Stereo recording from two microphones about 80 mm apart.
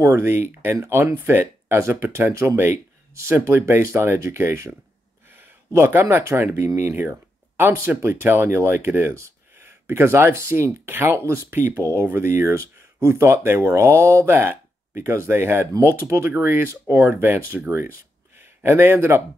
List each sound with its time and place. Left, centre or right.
0.0 s speech: right